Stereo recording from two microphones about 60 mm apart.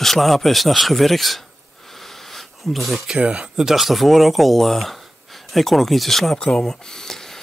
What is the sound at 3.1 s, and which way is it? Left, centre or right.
Speech, centre.